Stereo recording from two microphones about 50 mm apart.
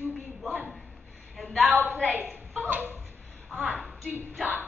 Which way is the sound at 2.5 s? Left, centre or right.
Right.